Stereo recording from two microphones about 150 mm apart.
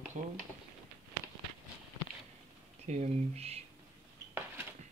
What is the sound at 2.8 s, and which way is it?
Speech, 45° right (ahead or behind).